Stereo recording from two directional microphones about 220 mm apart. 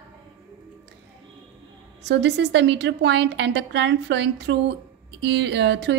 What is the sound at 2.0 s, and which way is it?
A woman's voice, 50° right (ahead or behind).